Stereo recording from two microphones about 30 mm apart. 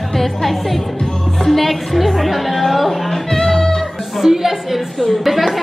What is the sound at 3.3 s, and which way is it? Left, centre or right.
Music, centre.